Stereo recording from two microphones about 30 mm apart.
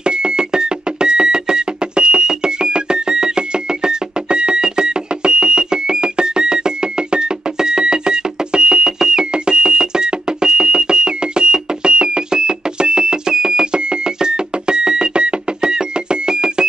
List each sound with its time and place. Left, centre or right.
0.0 s music: right